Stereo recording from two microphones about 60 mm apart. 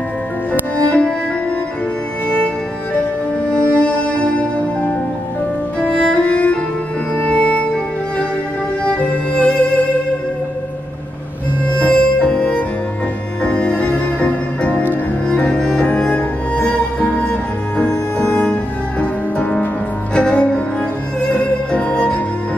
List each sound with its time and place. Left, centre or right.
0.5 s music: centre
2.2 s music: left
11.7 s music: left